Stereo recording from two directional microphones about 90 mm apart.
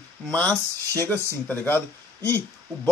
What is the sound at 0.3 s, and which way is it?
Speech, 15° left (ahead or behind).